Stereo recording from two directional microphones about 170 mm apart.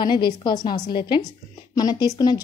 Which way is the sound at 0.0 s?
25° left (ahead or behind).